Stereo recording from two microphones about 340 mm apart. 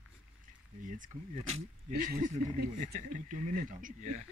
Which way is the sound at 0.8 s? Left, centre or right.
Right.